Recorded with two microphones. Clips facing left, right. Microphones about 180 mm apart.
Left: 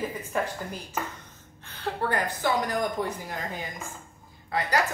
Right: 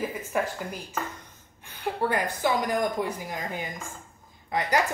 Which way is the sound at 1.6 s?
10° right (ahead or behind).